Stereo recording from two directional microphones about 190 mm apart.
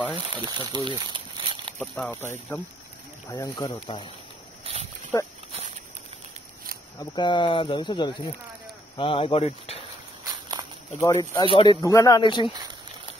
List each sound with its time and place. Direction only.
0.1 s speech: 25° right (ahead or behind)
1.8 s speech: 10° left (ahead or behind); by 4.1 s 25° left (ahead or behind)
4.6 s a sound: 30° right (ahead or behind)
7.0 s speech: 25° left (ahead or behind)
11.0 s speech: 20° left (ahead or behind)